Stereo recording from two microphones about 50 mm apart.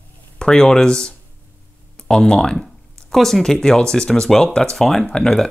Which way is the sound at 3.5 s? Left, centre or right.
Centre.